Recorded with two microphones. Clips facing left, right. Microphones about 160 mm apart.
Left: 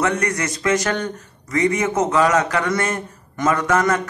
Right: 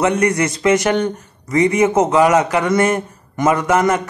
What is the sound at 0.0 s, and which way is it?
A man's voice, 20° right (ahead or behind).